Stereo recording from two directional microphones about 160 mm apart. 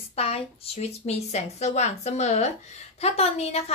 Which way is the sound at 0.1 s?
40° left (ahead or behind).